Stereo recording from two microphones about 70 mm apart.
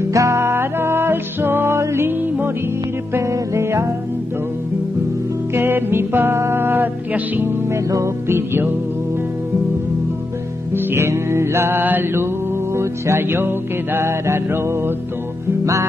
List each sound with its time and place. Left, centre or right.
0.1 s music: right
3.2 s music: right
5.5 s music: right
7.7 s music: right
10.7 s music: right
15.6 s music: right